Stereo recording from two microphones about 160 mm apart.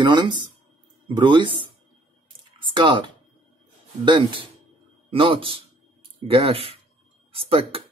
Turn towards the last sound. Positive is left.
turn(degrees=-35)  # may be behind; listen again after turning